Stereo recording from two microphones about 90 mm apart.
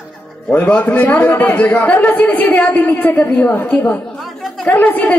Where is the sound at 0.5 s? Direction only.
15° left (ahead or behind).